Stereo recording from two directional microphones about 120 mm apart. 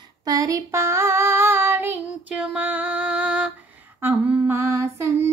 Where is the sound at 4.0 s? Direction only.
15° right (ahead or behind).